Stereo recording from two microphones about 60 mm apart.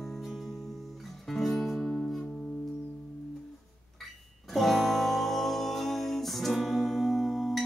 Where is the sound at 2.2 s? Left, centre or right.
Centre.